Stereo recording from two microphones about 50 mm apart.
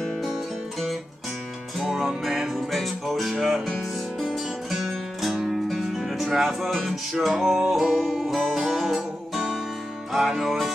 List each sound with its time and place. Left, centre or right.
0.2 s music: centre
1.8 s music: centre